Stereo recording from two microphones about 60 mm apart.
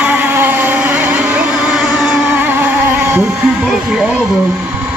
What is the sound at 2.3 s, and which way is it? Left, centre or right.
Vehicle, right.